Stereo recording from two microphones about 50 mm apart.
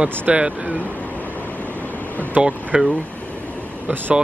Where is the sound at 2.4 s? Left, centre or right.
Right.